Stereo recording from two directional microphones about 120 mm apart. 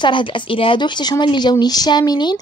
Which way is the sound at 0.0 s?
45° left (ahead or behind).